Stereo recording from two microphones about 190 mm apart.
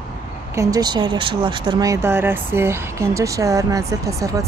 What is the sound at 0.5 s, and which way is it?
Speech, 20° right (ahead or behind).